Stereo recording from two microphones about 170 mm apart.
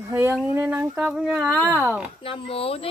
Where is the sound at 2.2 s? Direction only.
35° left (ahead or behind).